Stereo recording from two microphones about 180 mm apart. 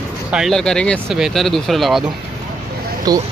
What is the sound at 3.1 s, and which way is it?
Speech, 20° right (ahead or behind).